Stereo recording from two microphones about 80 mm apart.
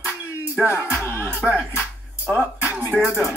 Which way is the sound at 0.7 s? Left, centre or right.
Left.